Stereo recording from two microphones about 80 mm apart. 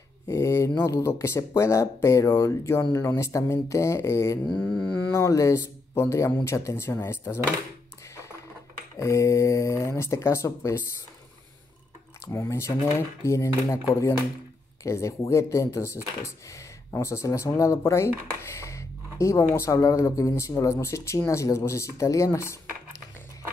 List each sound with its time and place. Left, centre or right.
0.3 s speech: left
4.5 s mantra: centre
5.1 s speech: left
8.9 s speech: left
12.3 s speech: left